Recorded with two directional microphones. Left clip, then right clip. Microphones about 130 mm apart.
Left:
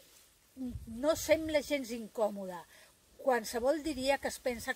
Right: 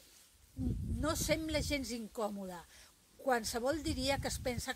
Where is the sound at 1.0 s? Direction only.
20° right (ahead or behind).